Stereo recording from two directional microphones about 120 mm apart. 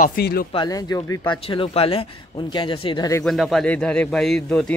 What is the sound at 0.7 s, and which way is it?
Speech, 30° left (ahead or behind).